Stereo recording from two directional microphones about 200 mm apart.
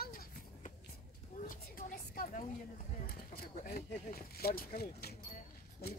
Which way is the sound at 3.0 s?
50° left (ahead or behind).